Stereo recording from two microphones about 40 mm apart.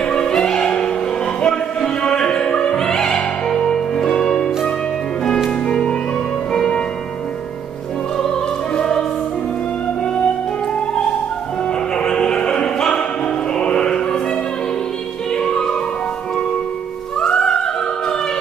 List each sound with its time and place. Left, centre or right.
0.0 s music: centre
1.4 s opera: left
3.4 s music: centre
5.7 s music: centre
8.2 s opera: centre
11.9 s music: left
17.3 s opera: centre